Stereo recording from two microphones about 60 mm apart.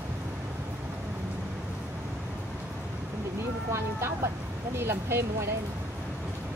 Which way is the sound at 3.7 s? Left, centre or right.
Right.